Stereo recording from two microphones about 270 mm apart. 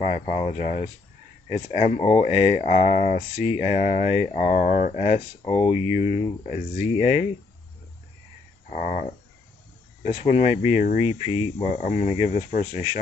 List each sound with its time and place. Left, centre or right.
0.0 s speech: left
8.6 s speech: left